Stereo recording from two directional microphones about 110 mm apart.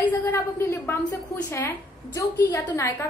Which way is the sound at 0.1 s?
20° left (ahead or behind).